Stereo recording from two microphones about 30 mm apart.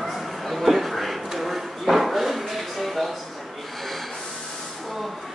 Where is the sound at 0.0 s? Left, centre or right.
Centre.